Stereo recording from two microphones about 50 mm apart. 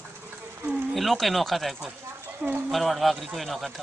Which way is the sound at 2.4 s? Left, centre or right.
Right.